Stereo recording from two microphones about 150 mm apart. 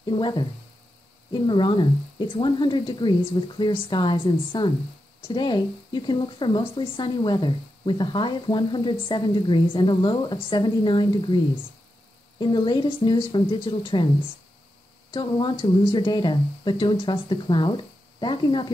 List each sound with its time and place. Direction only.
0.0 s speech: 30° left (ahead or behind)
15.0 s speech: 30° left (ahead or behind)